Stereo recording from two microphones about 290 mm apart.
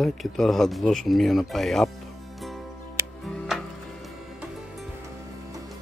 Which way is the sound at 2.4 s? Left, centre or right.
Centre.